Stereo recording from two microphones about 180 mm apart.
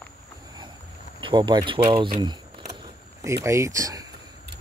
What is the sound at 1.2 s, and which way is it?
Speech, 25° right (ahead or behind).